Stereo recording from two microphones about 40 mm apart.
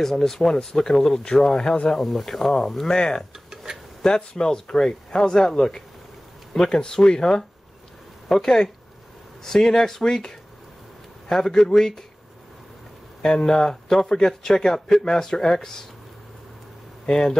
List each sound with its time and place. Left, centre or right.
0.0 s speech: centre
2.0 s speech: centre
13.2 s speech: centre
17.0 s speech: centre